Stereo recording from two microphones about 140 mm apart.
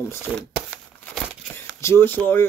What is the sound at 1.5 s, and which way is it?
Speech, 15° left (ahead or behind).